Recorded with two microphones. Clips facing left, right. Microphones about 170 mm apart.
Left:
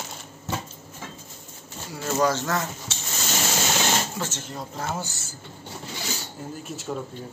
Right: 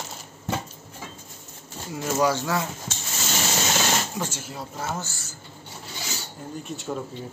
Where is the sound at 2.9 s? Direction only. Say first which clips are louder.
Right 2 dB; 50° right (ahead or behind).